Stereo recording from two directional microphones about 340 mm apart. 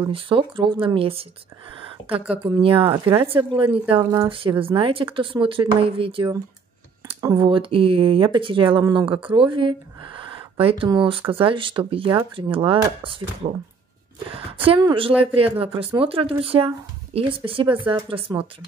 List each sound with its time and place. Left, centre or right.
0.1 s speech: centre
2.3 s speech: centre